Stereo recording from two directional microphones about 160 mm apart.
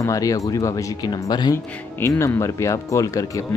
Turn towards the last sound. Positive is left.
turn(degrees=20)  # may be behind; listen again after turning